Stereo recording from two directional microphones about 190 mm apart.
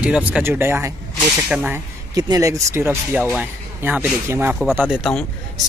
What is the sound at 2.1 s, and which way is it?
Speech, 20° right (ahead or behind).